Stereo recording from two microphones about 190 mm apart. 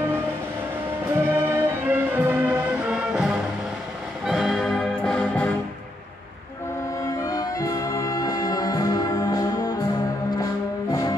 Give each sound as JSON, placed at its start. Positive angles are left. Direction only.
{"t": 1.2, "sound": "music", "side_deg": -10}
{"t": 7.0, "sound": "music", "side_deg": 20}